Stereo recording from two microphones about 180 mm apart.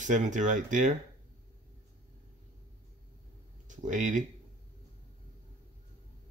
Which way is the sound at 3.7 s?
45° right (ahead or behind).